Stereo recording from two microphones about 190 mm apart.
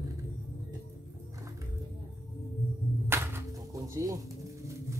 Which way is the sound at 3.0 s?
10° right (ahead or behind).